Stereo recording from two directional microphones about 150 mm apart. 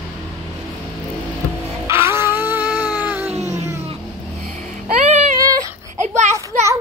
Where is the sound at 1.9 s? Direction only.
15° right (ahead or behind).